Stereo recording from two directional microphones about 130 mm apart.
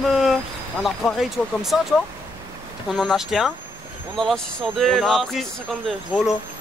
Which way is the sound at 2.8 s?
Centre (ahead or behind).